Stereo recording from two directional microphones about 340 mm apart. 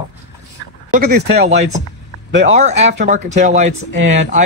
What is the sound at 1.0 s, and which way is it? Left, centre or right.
A man's voice, right.